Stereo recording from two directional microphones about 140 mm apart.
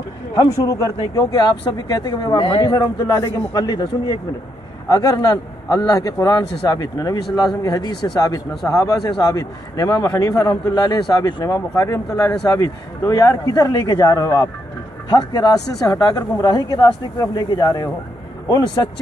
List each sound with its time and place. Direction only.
0.3 s a man's voice: 25° left (ahead or behind)